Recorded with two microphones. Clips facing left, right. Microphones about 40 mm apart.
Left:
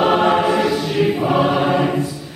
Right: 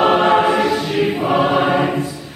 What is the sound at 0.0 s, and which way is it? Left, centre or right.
Choir, centre.